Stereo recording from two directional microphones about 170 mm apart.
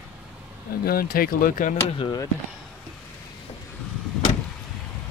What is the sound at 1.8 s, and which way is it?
Speech, 30° left (ahead or behind).